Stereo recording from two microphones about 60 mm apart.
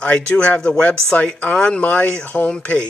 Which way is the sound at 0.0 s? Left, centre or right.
Left.